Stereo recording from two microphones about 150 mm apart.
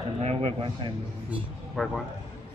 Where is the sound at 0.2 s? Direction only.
45° right (ahead or behind).